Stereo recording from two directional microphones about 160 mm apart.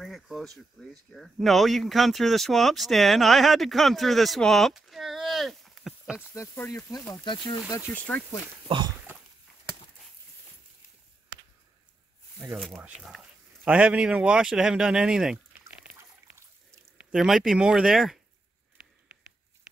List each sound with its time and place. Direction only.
0.0 s speech: centre (ahead or behind)
6.3 s speech: 15° left (ahead or behind)
7.7 s speech: 15° left (ahead or behind)
8.6 s speech: 30° right (ahead or behind)
8.9 s dog: 15° right (ahead or behind)
12.4 s speech: centre (ahead or behind)
17.1 s speech: centre (ahead or behind)